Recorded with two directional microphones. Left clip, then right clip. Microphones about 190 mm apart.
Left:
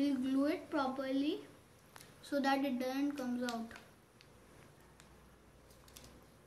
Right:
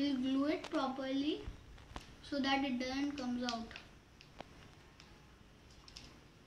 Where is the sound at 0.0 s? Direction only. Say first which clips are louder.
Left 1 dB; 20° left (ahead or behind).